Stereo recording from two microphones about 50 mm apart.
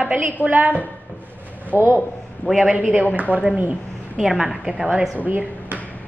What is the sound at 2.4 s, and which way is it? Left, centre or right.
Speech, left.